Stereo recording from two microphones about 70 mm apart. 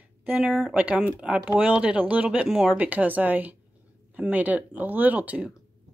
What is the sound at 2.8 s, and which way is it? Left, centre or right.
Speech, right.